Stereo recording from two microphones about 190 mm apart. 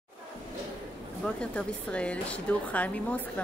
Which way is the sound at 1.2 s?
5° left (ahead or behind).